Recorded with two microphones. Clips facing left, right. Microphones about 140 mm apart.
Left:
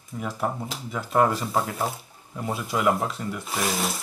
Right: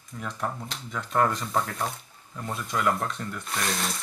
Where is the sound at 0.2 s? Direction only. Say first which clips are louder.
Left 4 dB; 20° left (ahead or behind).